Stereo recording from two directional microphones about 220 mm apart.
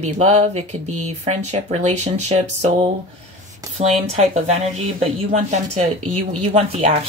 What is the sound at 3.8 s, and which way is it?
Speech, 30° right (ahead or behind).